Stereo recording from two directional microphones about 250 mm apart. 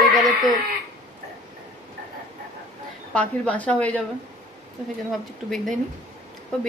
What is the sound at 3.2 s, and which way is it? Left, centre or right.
Speech, centre.